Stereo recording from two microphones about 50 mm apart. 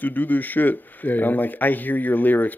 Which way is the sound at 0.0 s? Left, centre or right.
Left.